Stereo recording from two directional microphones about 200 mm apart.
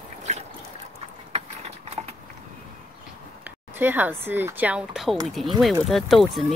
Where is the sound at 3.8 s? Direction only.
10° right (ahead or behind).